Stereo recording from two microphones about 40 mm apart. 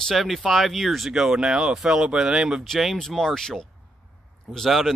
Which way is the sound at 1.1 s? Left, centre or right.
Centre.